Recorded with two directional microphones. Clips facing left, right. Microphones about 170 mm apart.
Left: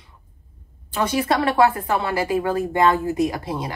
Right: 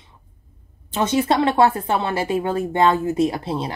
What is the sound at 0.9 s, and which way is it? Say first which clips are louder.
Speech: right 2 dB; 25° right (ahead or behind).